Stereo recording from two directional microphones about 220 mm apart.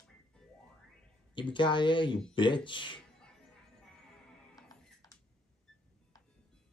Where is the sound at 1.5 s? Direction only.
20° left (ahead or behind).